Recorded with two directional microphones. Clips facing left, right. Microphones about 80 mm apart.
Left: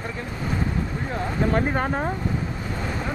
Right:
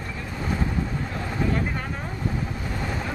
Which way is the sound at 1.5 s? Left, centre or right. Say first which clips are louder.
Left 6 dB; left.